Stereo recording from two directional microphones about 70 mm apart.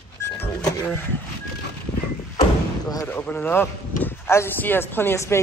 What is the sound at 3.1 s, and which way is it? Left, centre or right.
Speech, left.